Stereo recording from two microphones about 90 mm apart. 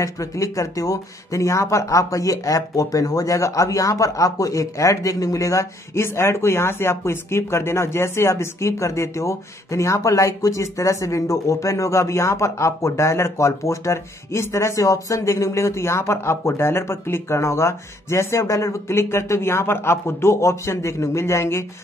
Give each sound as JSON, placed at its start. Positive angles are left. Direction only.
{"t": 0.0, "sound": "speech", "side_deg": 40}